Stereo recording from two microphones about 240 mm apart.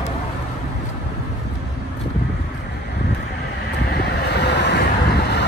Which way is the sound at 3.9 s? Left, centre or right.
Left.